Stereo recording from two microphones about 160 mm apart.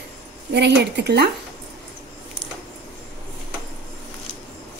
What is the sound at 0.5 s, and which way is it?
Speech, 90° right.